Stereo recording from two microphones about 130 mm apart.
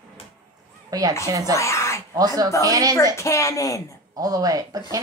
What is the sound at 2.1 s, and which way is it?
Speech, 30° right (ahead or behind).